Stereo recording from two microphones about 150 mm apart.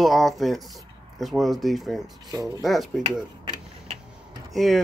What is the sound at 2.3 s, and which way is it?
Speech, 25° right (ahead or behind).